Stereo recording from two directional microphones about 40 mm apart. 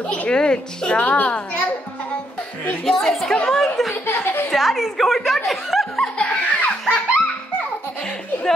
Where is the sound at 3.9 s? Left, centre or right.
Left.